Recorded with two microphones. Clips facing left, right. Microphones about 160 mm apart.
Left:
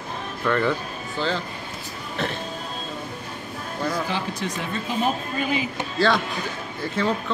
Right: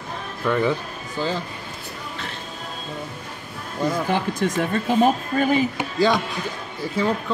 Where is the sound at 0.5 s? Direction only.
10° right (ahead or behind).